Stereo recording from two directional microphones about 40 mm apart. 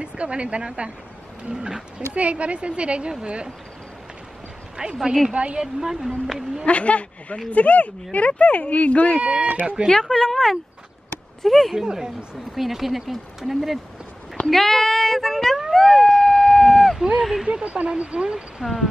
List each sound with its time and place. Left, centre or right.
0.0 s speech: right
2.1 s speech: right
4.8 s speech: right
5.6 s speech: centre
6.6 s speech: left
9.2 s speech: right
9.8 s speech: centre
11.7 s speech: centre
12.5 s speech: centre
14.4 s a sound: centre
17.5 s speech: right
18.6 s speech: centre